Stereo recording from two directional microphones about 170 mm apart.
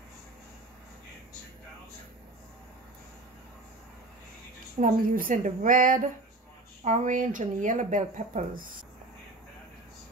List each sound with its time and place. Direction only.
4.7 s speech: 50° right (ahead or behind)